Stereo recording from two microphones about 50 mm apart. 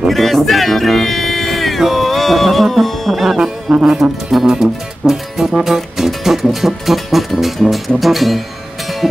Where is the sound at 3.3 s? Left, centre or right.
Centre.